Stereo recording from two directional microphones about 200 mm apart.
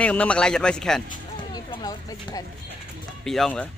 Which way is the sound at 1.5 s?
20° left (ahead or behind).